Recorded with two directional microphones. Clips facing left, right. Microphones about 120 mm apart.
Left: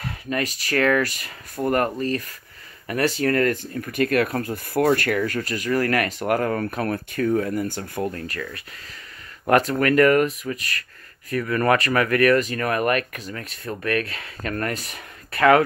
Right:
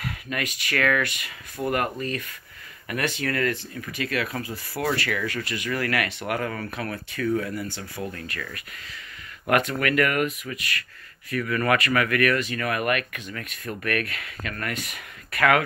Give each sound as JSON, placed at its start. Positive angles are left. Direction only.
{"t": 0.0, "sound": "speech", "side_deg": 35}
{"t": 9.5, "sound": "speech", "side_deg": 35}